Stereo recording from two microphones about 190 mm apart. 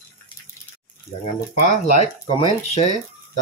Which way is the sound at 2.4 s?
35° left (ahead or behind).